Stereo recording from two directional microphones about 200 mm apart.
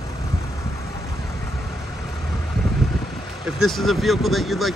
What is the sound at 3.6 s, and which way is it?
Speech, centre (ahead or behind).